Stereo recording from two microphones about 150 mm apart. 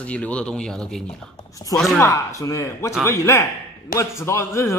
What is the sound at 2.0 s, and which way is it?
Speech, 20° left (ahead or behind).